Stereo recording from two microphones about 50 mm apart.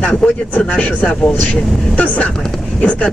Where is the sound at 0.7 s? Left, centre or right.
Left.